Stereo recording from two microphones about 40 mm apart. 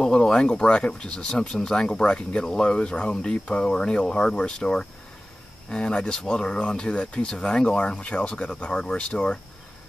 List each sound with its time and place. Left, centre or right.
0.0 s speech: centre
2.4 s speech: centre
2.7 s speech: left